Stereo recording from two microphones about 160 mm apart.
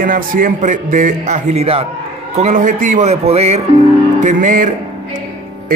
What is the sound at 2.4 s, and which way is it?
A man's voice, 50° right (ahead or behind).